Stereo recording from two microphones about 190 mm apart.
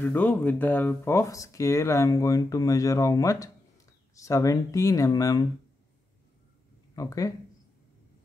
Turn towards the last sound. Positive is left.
turn(degrees=15)  # may be behind; listen again after turning